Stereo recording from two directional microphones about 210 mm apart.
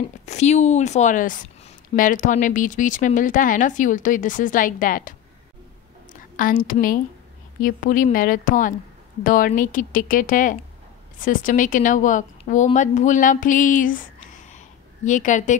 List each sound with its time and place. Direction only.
0.2 s a woman's voice: 35° left (ahead or behind)
6.3 s a woman's voice: 40° left (ahead or behind)